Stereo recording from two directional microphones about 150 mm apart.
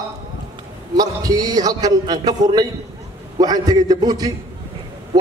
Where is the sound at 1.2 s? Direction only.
25° right (ahead or behind).